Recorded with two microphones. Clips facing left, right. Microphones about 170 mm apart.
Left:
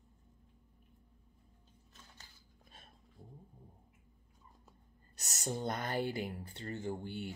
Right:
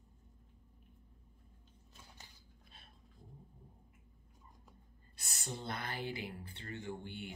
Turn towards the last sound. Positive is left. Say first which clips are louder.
# left 4 dB
turn(degrees=40)  # may be behind; listen again after turning